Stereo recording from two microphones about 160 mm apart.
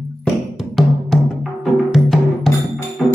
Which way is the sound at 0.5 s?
Centre (ahead or behind).